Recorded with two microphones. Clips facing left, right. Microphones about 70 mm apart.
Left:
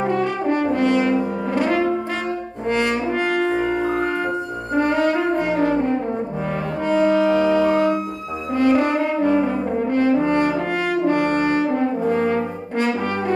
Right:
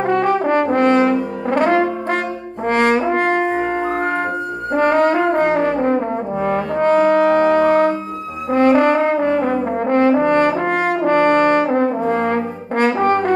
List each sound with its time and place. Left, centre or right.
0.0 s brass instrument: right
0.7 s french horn: right
2.7 s brass instrument: right
4.7 s brass instrument: right